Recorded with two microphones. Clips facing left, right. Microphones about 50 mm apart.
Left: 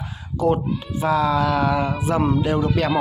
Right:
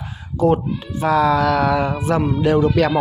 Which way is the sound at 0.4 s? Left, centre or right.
Right.